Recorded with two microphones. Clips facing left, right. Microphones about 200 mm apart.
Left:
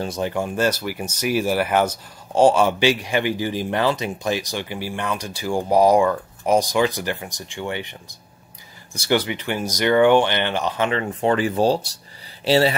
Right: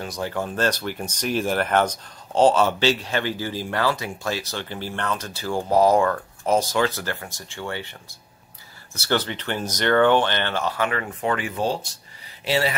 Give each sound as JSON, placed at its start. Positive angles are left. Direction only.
{"t": 0.0, "sound": "speech", "side_deg": 20}